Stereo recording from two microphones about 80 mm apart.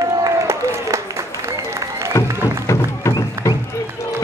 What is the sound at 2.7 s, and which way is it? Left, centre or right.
Music, left.